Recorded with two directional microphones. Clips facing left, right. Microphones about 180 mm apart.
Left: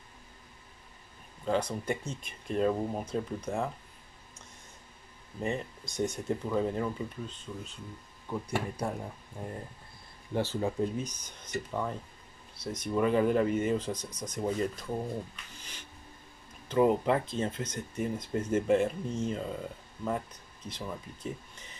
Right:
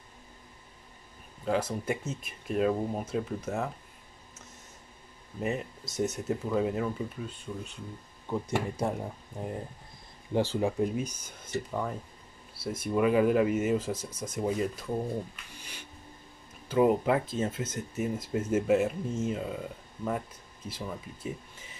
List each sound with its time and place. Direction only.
1.4 s speech: 5° right (ahead or behind)
5.4 s speech: 5° right (ahead or behind)
8.3 s speech: 20° right (ahead or behind)
10.3 s speech: 15° right (ahead or behind)
16.6 s speech: 5° right (ahead or behind)